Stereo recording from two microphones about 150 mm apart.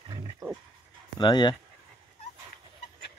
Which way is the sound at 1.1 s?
30° left (ahead or behind).